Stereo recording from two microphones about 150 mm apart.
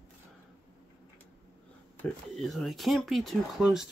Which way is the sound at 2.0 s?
5° left (ahead or behind).